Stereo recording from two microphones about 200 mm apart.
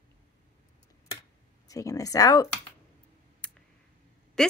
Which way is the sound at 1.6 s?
15° left (ahead or behind).